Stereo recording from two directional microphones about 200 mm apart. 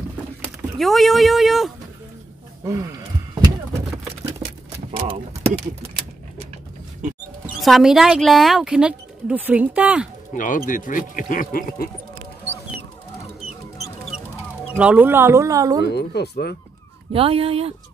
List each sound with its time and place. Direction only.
0.7 s speech: centre (ahead or behind)
2.6 s speech: 15° right (ahead or behind)
4.9 s speech: 35° right (ahead or behind)
7.6 s speech: centre (ahead or behind)
10.3 s speech: 40° left (ahead or behind)
14.7 s speech: 5° right (ahead or behind)
15.8 s speech: 55° left (ahead or behind)
17.1 s speech: 30° right (ahead or behind)